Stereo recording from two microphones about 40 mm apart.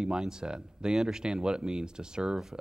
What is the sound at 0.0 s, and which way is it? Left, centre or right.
Speech, centre.